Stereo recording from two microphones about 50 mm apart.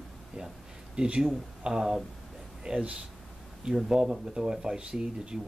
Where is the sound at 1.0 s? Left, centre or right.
Right.